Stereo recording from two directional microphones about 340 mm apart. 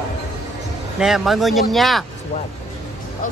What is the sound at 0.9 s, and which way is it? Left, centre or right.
Speech, centre.